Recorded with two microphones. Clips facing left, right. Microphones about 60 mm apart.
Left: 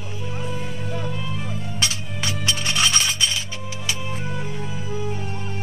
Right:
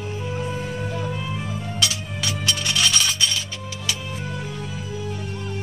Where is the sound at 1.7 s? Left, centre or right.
Left.